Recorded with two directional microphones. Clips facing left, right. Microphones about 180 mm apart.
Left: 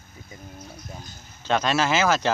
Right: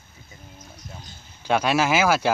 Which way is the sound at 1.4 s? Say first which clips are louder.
Right 2 dB; 10° right (ahead or behind).